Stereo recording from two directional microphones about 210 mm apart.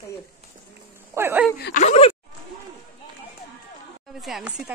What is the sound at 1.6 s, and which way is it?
Speech, 40° left (ahead or behind).